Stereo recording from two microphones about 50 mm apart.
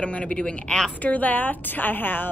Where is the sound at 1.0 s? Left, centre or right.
Left.